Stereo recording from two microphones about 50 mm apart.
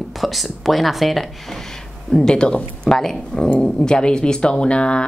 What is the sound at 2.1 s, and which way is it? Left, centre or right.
Speech, centre.